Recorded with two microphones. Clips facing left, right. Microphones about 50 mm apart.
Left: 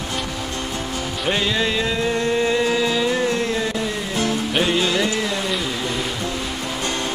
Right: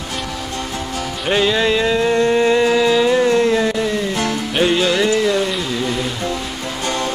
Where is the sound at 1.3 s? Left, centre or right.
Right.